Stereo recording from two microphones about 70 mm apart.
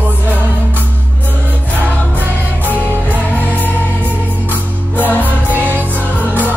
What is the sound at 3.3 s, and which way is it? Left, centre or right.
Music, left.